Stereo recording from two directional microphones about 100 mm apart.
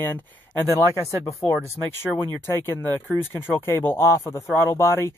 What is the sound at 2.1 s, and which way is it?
Speech, 5° right (ahead or behind).